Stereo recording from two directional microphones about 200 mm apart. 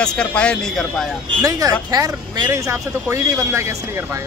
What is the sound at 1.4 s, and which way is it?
Speech, 15° right (ahead or behind).